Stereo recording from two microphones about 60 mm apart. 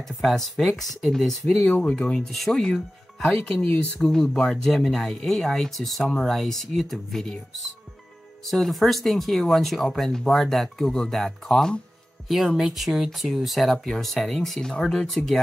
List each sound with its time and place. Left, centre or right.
0.0 s speech: centre
1.7 s speech: centre
2.3 s speech: centre
4.0 s speech: centre
8.5 s speech: centre